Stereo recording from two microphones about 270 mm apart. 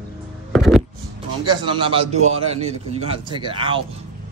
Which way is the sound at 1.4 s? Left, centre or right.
Centre.